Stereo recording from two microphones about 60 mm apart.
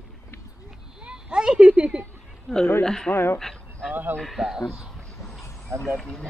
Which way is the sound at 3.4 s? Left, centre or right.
Centre.